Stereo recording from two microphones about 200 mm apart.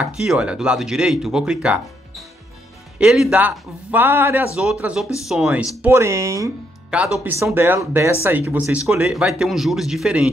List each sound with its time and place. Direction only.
0.0 s speech: 5° right (ahead or behind)